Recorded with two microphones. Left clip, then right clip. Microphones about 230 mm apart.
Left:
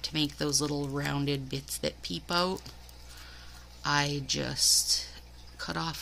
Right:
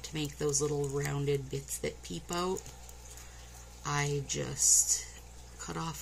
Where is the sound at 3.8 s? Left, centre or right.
Left.